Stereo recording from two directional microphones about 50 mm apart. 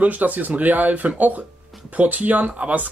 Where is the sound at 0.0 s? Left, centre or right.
Right.